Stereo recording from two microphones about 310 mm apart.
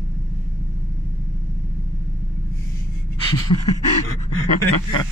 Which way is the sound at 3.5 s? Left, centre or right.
Left.